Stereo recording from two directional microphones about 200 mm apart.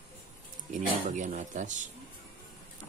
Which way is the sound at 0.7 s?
40° right (ahead or behind).